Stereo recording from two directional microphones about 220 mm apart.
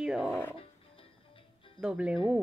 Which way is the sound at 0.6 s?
25° left (ahead or behind).